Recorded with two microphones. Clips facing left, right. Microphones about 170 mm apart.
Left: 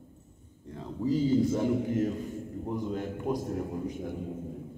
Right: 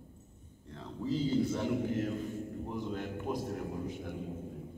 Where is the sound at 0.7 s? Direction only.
10° left (ahead or behind).